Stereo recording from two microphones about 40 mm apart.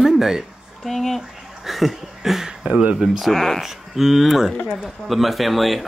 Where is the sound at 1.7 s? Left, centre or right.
Centre.